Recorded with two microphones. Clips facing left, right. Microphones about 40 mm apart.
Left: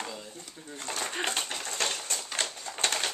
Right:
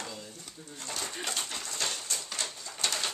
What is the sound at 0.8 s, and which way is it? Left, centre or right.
Pigeon, left.